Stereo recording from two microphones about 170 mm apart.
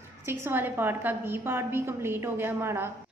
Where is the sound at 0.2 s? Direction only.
15° right (ahead or behind).